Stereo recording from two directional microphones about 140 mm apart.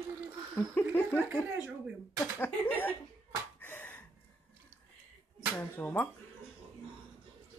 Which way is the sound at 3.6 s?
15° left (ahead or behind).